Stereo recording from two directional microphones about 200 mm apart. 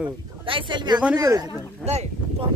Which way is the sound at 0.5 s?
25° right (ahead or behind).